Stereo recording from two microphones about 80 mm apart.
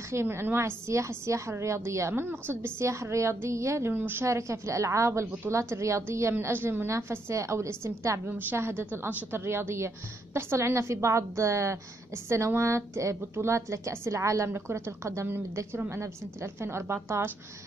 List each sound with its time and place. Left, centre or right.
0.1 s a woman's voice: right
3.9 s a woman's voice: right
8.3 s a woman's voice: right
16.6 s a woman's voice: right